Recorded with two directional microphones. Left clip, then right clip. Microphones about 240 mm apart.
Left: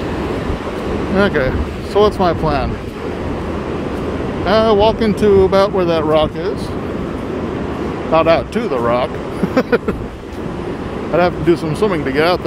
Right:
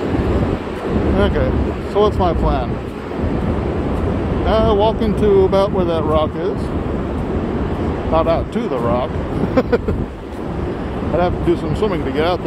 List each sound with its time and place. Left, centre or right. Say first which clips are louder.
1.1 s speech: left 6 dB; left
4.5 s speech: left 3 dB; left
8.1 s speech: left 5 dB; left
11.1 s speech: left 4 dB; left